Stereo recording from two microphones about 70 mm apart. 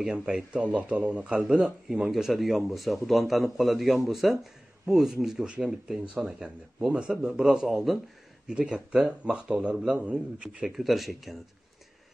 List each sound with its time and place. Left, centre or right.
0.0 s a man's voice: centre
10.8 s a man's voice: centre